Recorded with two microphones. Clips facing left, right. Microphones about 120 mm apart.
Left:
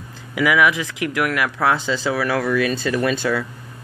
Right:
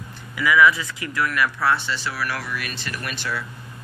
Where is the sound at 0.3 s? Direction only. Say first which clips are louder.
Left 1 dB; 90° left.